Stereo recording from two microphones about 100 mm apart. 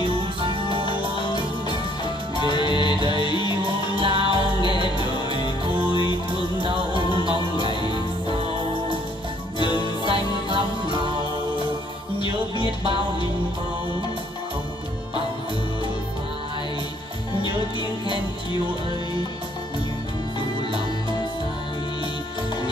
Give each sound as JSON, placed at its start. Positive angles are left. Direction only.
{"t": 0.0, "sound": "music", "side_deg": -60}
{"t": 0.8, "sound": "music", "side_deg": 50}
{"t": 3.0, "sound": "music", "side_deg": -60}
{"t": 3.3, "sound": "music", "side_deg": 50}
{"t": 3.6, "sound": "music", "side_deg": -60}
{"t": 9.6, "sound": "music", "side_deg": 50}
{"t": 10.0, "sound": "music", "side_deg": -55}
{"t": 18.0, "sound": "music", "side_deg": 50}